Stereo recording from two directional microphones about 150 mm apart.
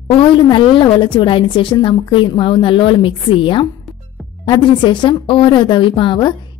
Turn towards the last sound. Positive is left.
turn(degrees=30)  # may be behind; listen again after turning